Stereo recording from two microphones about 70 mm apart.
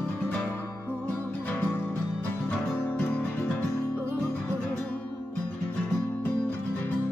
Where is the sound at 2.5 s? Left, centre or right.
Centre.